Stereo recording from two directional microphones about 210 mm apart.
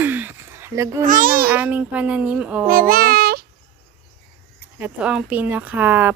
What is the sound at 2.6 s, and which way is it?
Speech, 45° right (ahead or behind).